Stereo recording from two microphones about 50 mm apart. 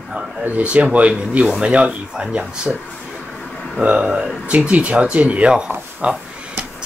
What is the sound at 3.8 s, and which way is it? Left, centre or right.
Speech, right.